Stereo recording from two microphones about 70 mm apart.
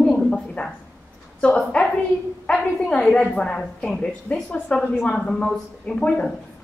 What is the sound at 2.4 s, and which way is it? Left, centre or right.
A woman's voice, centre.